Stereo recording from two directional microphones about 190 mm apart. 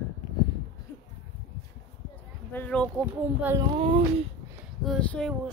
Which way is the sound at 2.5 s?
10° left (ahead or behind).